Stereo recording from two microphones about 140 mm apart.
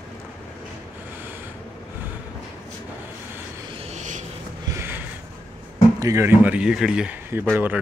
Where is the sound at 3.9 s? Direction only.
60° right (ahead or behind).